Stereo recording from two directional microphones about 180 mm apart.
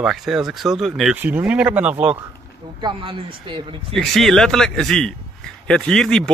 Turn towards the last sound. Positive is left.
turn(degrees=5)  # may be behind; listen again after turning